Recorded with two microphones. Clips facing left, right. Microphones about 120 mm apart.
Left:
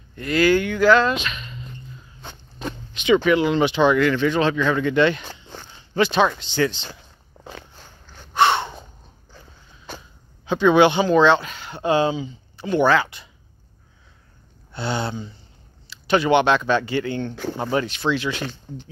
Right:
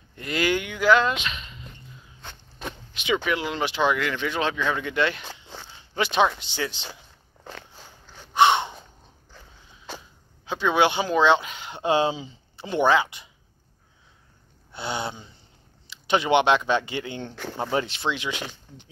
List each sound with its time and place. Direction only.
0.1 s speech: 25° right (ahead or behind)
2.6 s speech: 5° right (ahead or behind)
7.7 s a sound: 5° right (ahead or behind)
8.5 s a sound: 20° right (ahead or behind)
9.9 s speech: 5° right (ahead or behind)
14.7 s speech: 15° right (ahead or behind)
17.3 s speech: centre (ahead or behind)
17.7 s speech: 25° right (ahead or behind)